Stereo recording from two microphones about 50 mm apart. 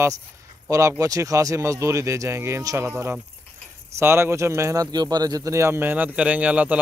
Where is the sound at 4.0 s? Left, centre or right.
Right.